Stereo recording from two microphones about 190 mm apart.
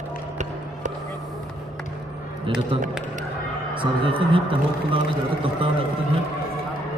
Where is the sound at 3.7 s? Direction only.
25° right (ahead or behind).